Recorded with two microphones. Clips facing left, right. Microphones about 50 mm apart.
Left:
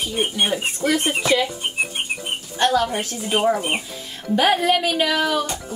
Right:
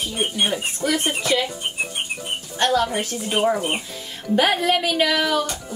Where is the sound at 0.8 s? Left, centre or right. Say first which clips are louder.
Left 2 dB; left.